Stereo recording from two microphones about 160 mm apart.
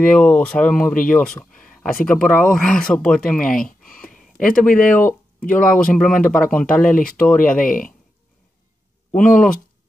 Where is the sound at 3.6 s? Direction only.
60° left (ahead or behind).